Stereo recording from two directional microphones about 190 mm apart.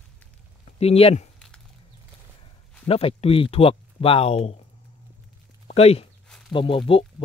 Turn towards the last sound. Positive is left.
turn(degrees=30)  # may be behind; listen again after turning